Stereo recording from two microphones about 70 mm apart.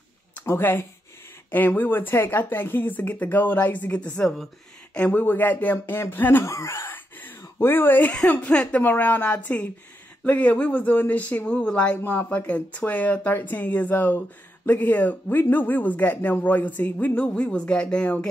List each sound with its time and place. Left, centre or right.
0.4 s speech: left
5.2 s speech: left
6.4 s a sound: left
8.3 s speech: left
12.0 s speech: left
17.2 s speech: centre